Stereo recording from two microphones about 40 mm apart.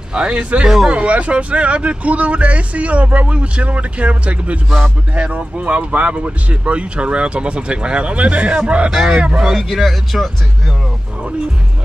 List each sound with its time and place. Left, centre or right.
0.1 s speech: right
9.6 s speech: centre